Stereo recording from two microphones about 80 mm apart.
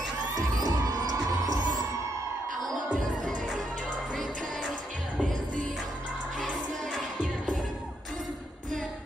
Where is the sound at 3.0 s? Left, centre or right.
Centre.